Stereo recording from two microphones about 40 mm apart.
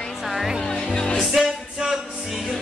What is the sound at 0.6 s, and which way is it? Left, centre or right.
Music, centre.